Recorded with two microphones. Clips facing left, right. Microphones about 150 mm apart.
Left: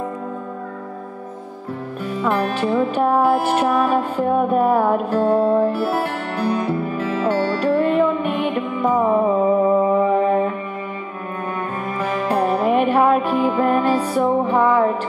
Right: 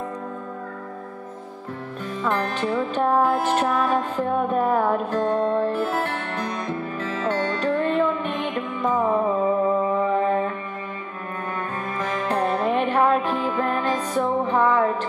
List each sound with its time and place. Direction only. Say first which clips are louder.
2.0 s music: left 4 dB; 10° left (ahead or behind)
12.0 s music: left 4 dB; 10° left (ahead or behind)